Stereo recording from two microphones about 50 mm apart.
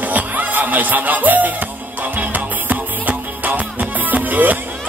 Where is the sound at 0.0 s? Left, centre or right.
Right.